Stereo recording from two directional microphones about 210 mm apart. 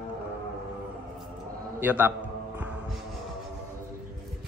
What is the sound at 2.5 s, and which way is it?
Music, 5° right (ahead or behind).